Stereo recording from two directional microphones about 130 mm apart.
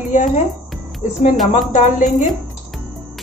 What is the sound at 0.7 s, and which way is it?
Cricket, centre (ahead or behind).